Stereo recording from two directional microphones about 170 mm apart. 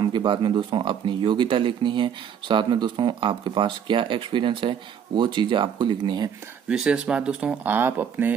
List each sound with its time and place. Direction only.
0.0 s speech: 25° right (ahead or behind)
6.7 s speech: 5° right (ahead or behind)